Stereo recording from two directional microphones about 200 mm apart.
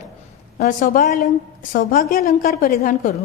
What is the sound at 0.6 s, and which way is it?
A woman's voice, 45° left (ahead or behind).